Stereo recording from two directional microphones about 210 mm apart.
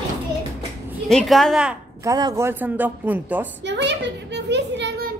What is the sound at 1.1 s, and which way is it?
Speech, centre (ahead or behind).